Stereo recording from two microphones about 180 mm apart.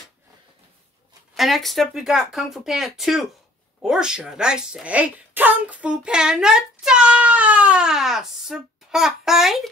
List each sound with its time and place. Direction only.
1.3 s speech: centre (ahead or behind)